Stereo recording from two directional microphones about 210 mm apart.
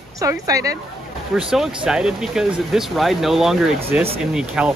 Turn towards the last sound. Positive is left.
turn(degrees=-5)  # may be behind; listen again after turning